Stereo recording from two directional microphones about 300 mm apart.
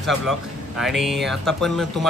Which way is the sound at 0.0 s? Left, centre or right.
Centre.